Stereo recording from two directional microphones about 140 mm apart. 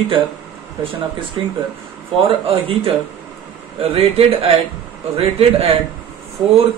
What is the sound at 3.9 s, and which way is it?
A man's voice, 45° right (ahead or behind).